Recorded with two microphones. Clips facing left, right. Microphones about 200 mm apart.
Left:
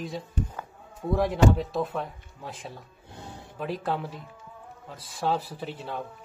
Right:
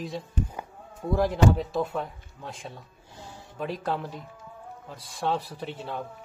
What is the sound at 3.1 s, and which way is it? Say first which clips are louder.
Music: left 2 dB; 60° left (ahead or behind).